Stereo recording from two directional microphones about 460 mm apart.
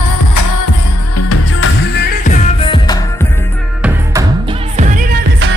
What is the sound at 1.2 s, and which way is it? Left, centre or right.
Music, left.